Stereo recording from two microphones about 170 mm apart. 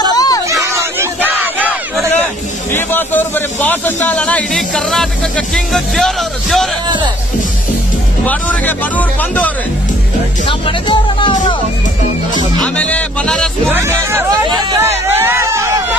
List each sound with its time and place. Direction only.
0.1 s a sound: 20° left (ahead or behind)
0.5 s crowd: 15° right (ahead or behind)
2.7 s a sound: 10° left (ahead or behind)
5.5 s music: centre (ahead or behind)
8.3 s speech: 10° left (ahead or behind)
10.9 s speech: 30° left (ahead or behind)
12.7 s speech: 5° left (ahead or behind)
13.7 s speech: 15° right (ahead or behind)
14.4 s speech: 25° right (ahead or behind)
14.9 s a sound: 15° right (ahead or behind)